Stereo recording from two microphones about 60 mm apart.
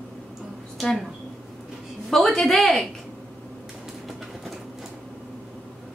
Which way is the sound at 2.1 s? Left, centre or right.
Centre.